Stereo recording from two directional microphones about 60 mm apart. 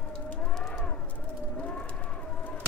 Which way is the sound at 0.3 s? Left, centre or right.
Centre.